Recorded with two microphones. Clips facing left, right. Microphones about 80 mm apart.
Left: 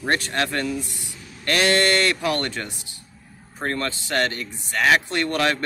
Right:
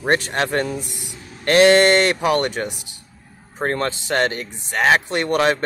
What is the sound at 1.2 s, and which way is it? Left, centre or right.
Speech, right.